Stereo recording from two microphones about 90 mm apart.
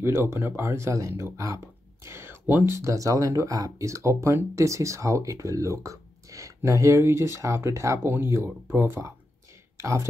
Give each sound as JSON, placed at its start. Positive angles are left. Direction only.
{"t": 0.0, "sound": "speech", "side_deg": -30}